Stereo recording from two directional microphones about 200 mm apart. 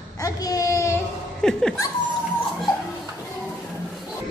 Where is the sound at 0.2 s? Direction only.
20° left (ahead or behind).